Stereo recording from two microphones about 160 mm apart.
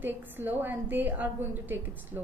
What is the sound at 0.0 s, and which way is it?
A woman's voice, 10° right (ahead or behind).